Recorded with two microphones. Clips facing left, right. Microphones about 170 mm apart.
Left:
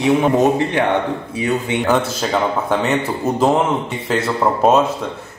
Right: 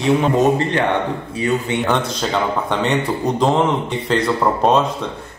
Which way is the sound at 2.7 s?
5° left (ahead or behind).